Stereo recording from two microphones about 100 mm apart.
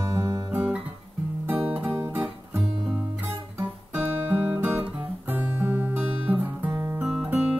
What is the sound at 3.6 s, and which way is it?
Guitar, 15° right (ahead or behind).